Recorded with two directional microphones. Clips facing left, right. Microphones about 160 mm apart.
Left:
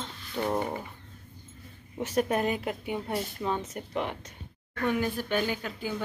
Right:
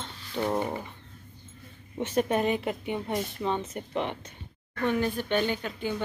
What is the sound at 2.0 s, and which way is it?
A woman's voice, centre (ahead or behind).